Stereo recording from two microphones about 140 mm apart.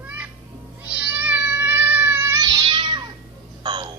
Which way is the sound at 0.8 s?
10° right (ahead or behind).